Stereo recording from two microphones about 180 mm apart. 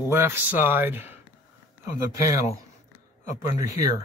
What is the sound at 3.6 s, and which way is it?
Speech, 20° right (ahead or behind).